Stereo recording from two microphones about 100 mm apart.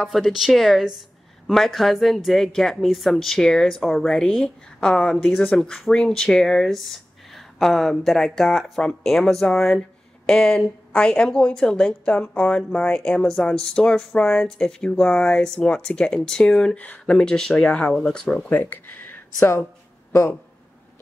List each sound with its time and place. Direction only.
0.0 s speech: centre (ahead or behind); by 20.3 s 25° left (ahead or behind)